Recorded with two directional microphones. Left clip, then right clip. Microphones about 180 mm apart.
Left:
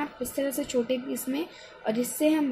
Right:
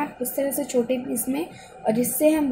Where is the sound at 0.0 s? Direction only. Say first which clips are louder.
Right 4 dB; 5° left (ahead or behind).